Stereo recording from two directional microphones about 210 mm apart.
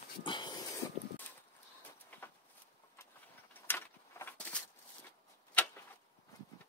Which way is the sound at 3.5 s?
10° left (ahead or behind).